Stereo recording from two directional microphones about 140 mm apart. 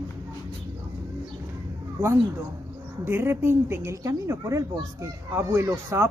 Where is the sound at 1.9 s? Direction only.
20° right (ahead or behind).